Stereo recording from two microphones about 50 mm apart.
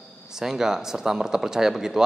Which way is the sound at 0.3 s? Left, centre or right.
Centre.